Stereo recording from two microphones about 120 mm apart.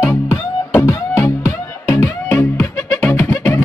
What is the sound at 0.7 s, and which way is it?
Music, 25° left (ahead or behind).